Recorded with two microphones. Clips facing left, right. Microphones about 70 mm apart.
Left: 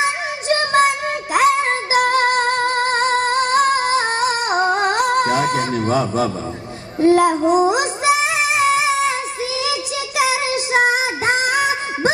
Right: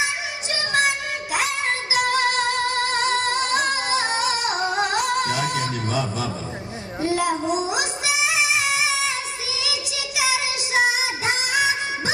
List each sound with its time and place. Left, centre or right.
0.0 s child singing: left
1.3 s music: left
7.0 s child singing: left